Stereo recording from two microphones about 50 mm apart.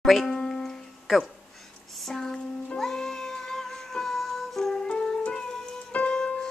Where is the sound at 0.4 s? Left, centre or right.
Centre.